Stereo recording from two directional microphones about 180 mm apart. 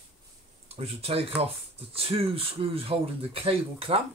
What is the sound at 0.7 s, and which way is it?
Speech, 35° right (ahead or behind).